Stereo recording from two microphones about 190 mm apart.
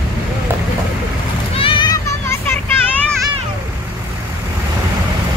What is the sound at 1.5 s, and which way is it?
Vehicle, 25° left (ahead or behind).